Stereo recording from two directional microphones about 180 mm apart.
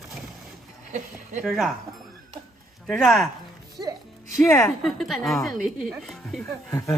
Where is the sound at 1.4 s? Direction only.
Centre (ahead or behind).